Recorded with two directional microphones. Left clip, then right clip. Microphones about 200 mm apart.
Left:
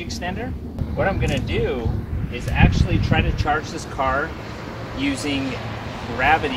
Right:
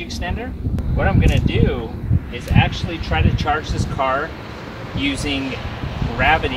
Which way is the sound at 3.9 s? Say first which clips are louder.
Right 2 dB; centre (ahead or behind).